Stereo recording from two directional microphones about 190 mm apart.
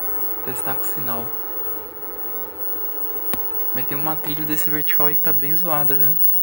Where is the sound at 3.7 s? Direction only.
15° right (ahead or behind).